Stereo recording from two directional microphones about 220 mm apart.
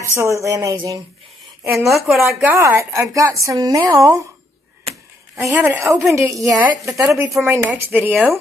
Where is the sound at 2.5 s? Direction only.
15° right (ahead or behind).